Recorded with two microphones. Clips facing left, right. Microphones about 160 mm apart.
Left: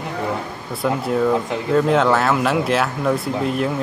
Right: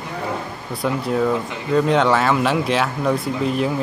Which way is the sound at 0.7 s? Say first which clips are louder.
Left 1 dB; centre (ahead or behind).